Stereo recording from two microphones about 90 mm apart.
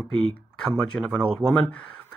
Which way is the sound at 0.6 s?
10° left (ahead or behind).